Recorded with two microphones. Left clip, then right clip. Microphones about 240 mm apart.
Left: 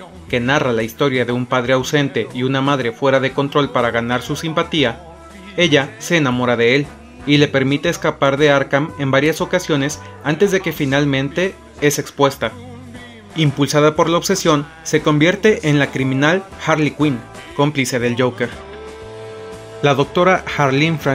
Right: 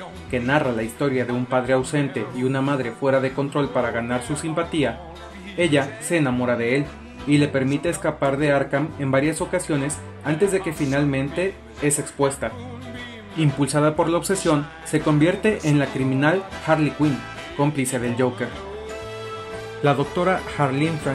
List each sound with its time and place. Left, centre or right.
0.3 s speech: left
19.8 s speech: left